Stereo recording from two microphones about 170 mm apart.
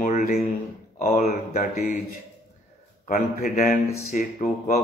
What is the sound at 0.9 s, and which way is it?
Speech, 60° left (ahead or behind).